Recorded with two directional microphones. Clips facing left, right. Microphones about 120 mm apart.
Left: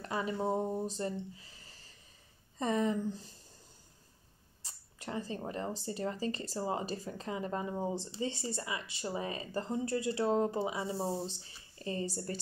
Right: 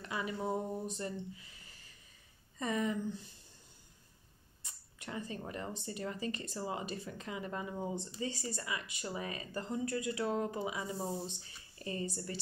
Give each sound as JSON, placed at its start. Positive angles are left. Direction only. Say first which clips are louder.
{"t": 0.0, "sound": "speech", "louder": "left 4 dB", "side_deg": 35}
{"t": 4.6, "sound": "speech", "louder": "left 4 dB", "side_deg": 35}